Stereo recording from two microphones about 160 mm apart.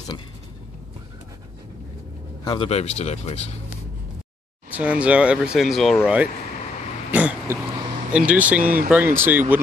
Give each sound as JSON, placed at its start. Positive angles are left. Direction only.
{"t": 2.4, "sound": "speech", "side_deg": 30}
{"t": 2.7, "sound": "speech", "side_deg": 45}
{"t": 4.7, "sound": "speech", "side_deg": -10}
{"t": 7.1, "sound": "throat clearing", "side_deg": -10}
{"t": 8.1, "sound": "speech", "side_deg": -5}